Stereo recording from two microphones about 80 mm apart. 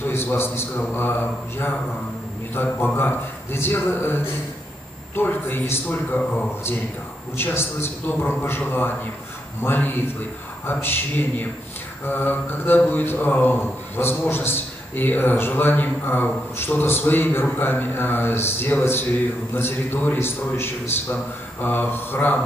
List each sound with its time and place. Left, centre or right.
0.0 s a man's voice: left
2.5 s a man's voice: left